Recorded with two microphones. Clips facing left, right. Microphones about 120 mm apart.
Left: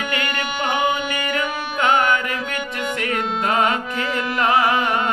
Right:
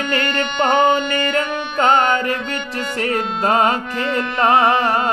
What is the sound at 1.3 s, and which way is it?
Music, 35° right (ahead or behind).